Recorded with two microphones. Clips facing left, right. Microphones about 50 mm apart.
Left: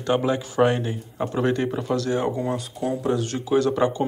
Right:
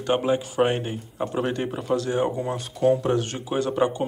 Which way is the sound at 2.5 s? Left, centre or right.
Right.